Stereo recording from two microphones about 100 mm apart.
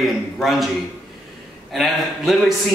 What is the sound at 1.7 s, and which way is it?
Speech, 5° right (ahead or behind).